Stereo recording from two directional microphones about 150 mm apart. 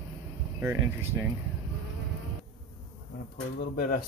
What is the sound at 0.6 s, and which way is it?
Speech, 15° right (ahead or behind).